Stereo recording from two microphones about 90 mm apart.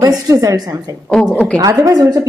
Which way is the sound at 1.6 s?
40° right (ahead or behind).